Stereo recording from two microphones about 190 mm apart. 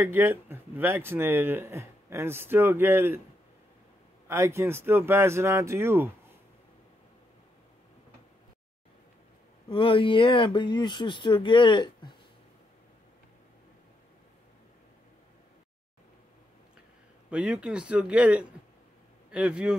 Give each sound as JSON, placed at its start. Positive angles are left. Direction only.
{"t": 0.0, "sound": "speech", "side_deg": -10}
{"t": 4.3, "sound": "speech", "side_deg": -15}
{"t": 9.7, "sound": "speech", "side_deg": 25}
{"t": 17.3, "sound": "speech", "side_deg": -5}